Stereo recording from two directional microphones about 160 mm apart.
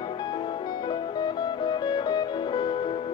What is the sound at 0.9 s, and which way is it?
Music, 25° left (ahead or behind).